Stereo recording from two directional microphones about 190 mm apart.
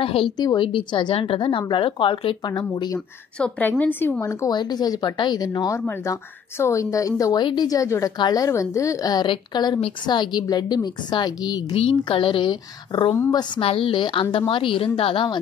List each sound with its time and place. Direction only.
0.0 s a woman's voice: 30° left (ahead or behind)
3.3 s a woman's voice: 5° left (ahead or behind); by 15.3 s 30° left (ahead or behind)